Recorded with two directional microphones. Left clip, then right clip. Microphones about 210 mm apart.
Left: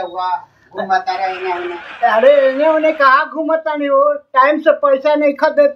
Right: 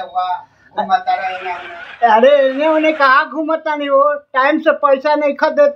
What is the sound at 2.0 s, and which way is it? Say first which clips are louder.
A woman's voice: right 1 dB; 20° right (ahead or behind).